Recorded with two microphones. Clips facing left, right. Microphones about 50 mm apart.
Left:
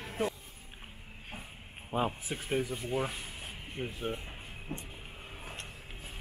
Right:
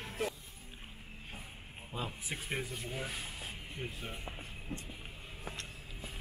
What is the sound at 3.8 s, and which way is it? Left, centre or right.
Speech, left.